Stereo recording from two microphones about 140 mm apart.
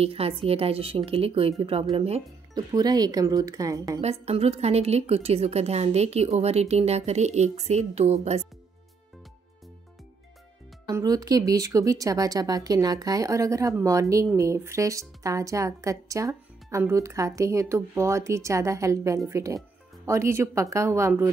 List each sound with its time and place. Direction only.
0.0 s a woman's voice: 45° right (ahead or behind)
2.5 s speech: 30° right (ahead or behind)
4.0 s a woman's voice: 50° right (ahead or behind)
10.9 s speech: 25° right (ahead or behind)